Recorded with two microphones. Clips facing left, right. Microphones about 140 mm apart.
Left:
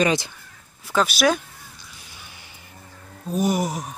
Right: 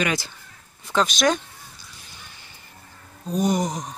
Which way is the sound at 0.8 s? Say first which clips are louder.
Left 1 dB; 5° left (ahead or behind).